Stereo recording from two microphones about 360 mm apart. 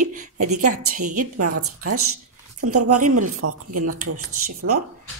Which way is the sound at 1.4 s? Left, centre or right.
Right.